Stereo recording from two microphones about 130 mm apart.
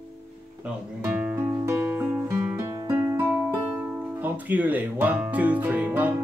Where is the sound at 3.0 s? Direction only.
20° right (ahead or behind).